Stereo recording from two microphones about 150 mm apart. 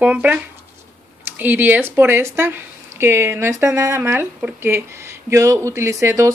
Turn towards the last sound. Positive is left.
turn(degrees=-20)  # may be behind; listen again after turning